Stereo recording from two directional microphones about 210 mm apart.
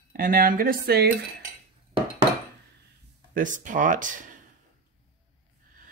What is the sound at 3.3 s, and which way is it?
Speech, 40° right (ahead or behind).